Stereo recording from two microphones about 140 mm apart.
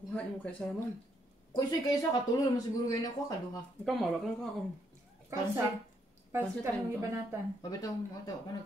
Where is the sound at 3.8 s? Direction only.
5° left (ahead or behind).